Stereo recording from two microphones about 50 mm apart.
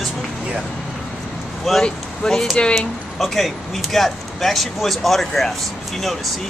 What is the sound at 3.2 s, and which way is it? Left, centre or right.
Speech, centre.